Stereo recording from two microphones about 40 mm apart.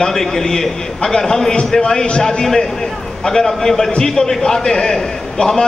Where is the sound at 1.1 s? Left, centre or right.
Centre.